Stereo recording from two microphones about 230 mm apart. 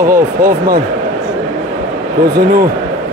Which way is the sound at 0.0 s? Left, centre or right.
Right.